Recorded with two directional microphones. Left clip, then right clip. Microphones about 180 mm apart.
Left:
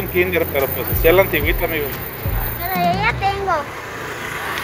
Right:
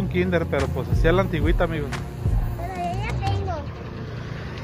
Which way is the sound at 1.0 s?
25° right (ahead or behind).